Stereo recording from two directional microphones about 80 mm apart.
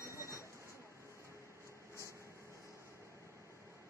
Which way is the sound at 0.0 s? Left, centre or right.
Right.